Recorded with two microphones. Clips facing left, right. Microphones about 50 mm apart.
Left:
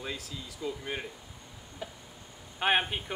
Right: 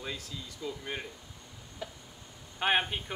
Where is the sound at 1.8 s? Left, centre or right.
Centre.